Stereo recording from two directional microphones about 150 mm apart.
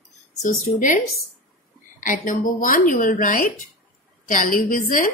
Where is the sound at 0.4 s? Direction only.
60° left (ahead or behind).